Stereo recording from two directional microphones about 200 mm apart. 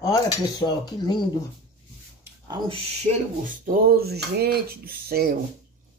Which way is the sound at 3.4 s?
40° right (ahead or behind).